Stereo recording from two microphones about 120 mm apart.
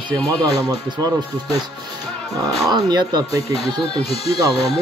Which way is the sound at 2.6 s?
35° right (ahead or behind).